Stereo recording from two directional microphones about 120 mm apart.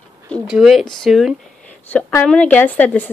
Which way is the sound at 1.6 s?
15° left (ahead or behind).